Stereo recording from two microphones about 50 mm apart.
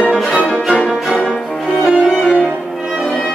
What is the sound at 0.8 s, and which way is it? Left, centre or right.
Music, centre.